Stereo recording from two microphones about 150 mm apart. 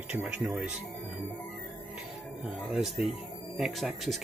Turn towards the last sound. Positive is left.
turn(degrees=0)  # may be behind; listen again after turning